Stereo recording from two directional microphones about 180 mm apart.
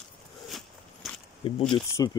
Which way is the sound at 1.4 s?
30° left (ahead or behind).